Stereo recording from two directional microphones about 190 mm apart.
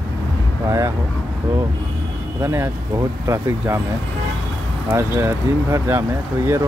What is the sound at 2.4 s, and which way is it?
Speech, 15° right (ahead or behind).